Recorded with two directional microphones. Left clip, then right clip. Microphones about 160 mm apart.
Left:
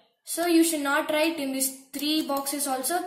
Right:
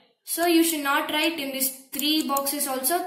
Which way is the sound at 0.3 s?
35° left (ahead or behind).